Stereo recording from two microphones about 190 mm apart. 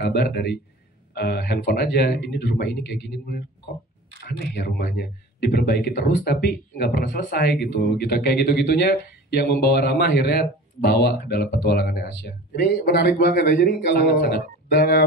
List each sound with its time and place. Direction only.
0.0 s speech: 60° left (ahead or behind)